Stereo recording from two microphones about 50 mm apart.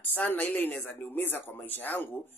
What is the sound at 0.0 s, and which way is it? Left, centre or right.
A woman's voice, left.